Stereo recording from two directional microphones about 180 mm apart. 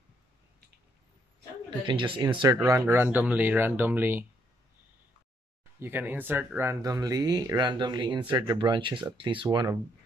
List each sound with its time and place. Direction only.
1.9 s speech: 30° right (ahead or behind)
2.5 s speech: 15° right (ahead or behind)
5.8 s speech: 10° right (ahead or behind)